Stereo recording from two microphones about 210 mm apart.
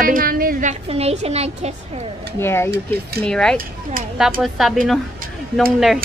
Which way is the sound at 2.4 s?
10° left (ahead or behind).